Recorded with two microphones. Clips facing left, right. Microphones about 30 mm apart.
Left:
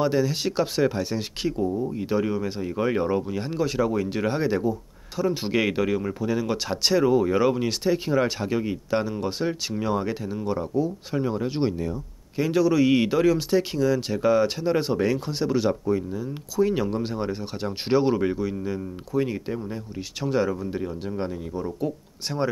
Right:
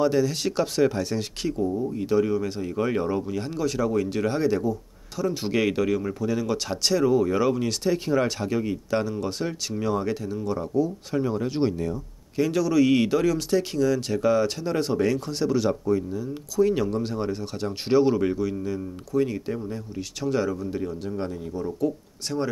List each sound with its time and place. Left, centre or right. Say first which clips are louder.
0.0 s speech: right 1 dB; centre